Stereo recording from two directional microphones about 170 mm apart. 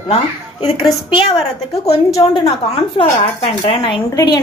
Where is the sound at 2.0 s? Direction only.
20° left (ahead or behind).